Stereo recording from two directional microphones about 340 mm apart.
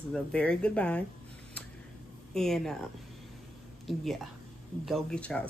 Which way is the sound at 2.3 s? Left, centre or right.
Centre.